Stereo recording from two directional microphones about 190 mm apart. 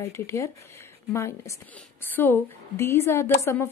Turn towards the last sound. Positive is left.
turn(degrees=15)  # may be behind; listen again after turning